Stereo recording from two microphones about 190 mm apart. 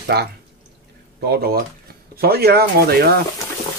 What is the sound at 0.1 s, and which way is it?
Speech, 55° right (ahead or behind).